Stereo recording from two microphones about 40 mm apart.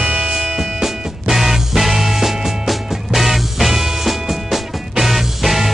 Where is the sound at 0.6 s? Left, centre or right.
Centre.